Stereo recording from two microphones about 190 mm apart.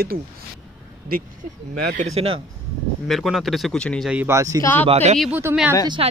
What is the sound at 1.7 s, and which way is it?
Speech, 55° right (ahead or behind).